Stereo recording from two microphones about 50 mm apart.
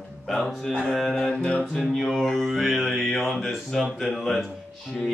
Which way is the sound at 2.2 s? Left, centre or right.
Centre.